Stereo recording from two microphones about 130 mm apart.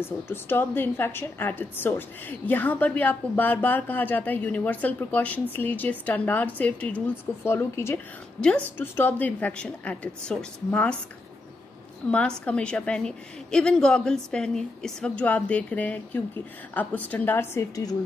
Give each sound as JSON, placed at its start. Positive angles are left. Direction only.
{"t": 0.0, "sound": "a woman's voice", "side_deg": 15}
{"t": 8.4, "sound": "a woman's voice", "side_deg": 10}
{"t": 12.1, "sound": "a woman's voice", "side_deg": 10}